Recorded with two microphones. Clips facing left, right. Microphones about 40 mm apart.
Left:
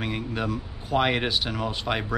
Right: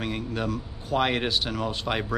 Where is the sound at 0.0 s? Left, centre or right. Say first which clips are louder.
Even; centre.